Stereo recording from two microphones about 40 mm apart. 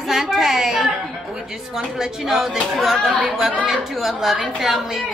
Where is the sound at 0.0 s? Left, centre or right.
Centre.